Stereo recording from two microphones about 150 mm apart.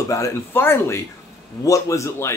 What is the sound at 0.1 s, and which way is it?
A man's voice, 15° left (ahead or behind).